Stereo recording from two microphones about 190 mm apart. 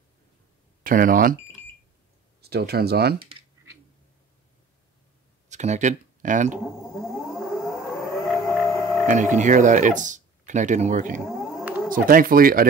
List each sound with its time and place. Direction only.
0.8 s speech: 45° right (ahead or behind)
2.4 s speech: 55° right (ahead or behind)
3.2 s computer keyboard: 25° right (ahead or behind)
5.5 s speech: 40° right (ahead or behind)
7.5 s civil defense siren: centre (ahead or behind)
9.0 s speech: 40° right (ahead or behind)